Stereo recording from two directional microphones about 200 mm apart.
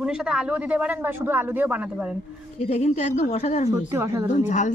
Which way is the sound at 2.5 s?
35° left (ahead or behind).